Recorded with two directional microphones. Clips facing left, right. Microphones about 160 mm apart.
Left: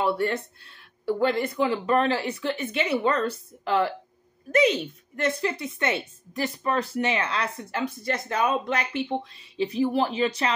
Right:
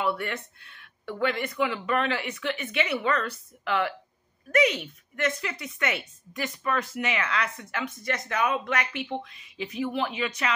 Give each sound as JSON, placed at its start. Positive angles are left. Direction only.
{"t": 0.0, "sound": "a woman's voice", "side_deg": 35}